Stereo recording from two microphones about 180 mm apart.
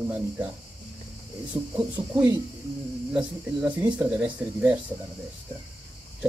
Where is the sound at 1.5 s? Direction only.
25° right (ahead or behind).